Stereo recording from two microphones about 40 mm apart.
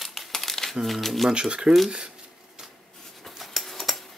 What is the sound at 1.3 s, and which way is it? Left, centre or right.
Speech, right.